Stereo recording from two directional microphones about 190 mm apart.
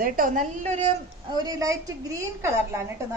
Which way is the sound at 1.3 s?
20° right (ahead or behind).